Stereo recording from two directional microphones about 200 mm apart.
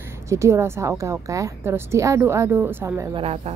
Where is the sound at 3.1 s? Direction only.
30° right (ahead or behind).